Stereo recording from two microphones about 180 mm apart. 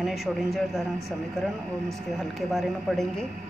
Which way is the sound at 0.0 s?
Centre (ahead or behind).